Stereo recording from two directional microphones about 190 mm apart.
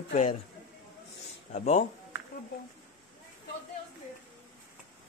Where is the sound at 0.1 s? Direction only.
35° left (ahead or behind).